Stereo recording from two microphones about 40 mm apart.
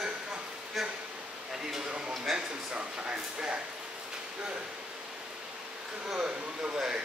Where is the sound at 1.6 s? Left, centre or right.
Centre.